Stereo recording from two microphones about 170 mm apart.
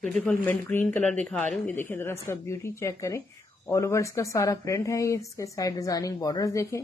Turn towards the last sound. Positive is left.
turn(degrees=20)  # may be behind; listen again after turning